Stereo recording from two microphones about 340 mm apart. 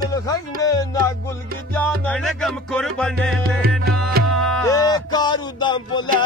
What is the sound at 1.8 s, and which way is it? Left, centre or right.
Music, centre.